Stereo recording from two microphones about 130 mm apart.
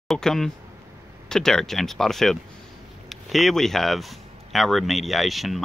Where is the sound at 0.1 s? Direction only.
5° left (ahead or behind).